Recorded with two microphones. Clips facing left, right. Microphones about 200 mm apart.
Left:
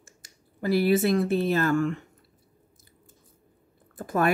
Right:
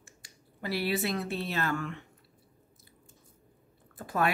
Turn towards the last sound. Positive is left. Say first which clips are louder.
# left 4 dB
turn(degrees=45)  # may be behind; listen again after turning